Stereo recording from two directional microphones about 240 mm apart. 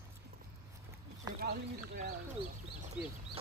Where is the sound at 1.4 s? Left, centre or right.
Right.